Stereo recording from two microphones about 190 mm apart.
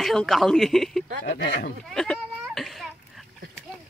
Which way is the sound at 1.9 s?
5° left (ahead or behind).